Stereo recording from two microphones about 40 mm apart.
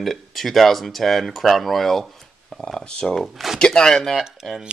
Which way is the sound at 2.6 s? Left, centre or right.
Left.